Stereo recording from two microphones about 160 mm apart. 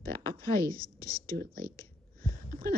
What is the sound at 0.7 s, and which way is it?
Speech, 65° right (ahead or behind).